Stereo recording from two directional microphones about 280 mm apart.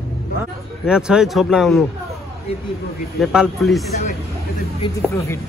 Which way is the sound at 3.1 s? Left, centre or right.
Centre.